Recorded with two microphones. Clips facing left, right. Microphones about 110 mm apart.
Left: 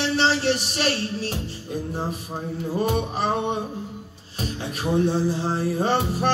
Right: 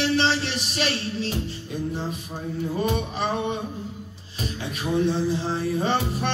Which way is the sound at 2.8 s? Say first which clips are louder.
Left 3 dB; 45° left (ahead or behind).